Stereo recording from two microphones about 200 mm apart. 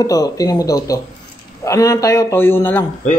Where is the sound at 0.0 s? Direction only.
20° left (ahead or behind).